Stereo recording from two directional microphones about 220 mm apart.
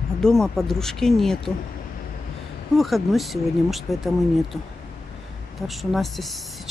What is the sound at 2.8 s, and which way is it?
Speech, centre (ahead or behind).